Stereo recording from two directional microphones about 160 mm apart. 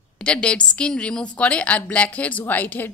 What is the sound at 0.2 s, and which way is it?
A woman's voice, 5° left (ahead or behind).